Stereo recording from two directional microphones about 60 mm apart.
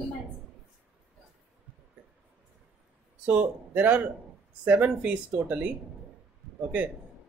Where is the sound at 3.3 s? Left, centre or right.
Right.